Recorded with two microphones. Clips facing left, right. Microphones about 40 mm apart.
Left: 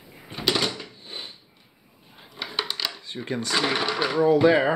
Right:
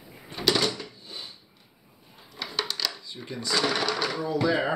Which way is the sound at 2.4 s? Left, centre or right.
Left.